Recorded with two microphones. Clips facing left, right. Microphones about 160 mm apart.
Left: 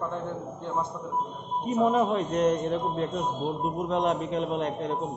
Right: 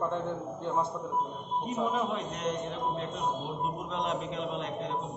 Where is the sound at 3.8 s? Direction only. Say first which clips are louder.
Left 7 dB; 45° left (ahead or behind).